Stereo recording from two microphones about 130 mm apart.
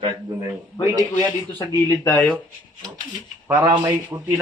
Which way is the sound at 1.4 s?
15° left (ahead or behind).